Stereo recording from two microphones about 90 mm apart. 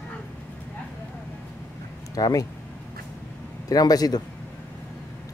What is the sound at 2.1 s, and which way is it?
Speech, 45° left (ahead or behind).